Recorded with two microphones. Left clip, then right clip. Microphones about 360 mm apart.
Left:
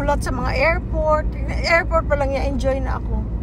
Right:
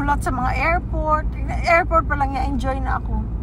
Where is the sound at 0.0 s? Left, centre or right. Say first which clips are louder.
Right 1 dB; centre.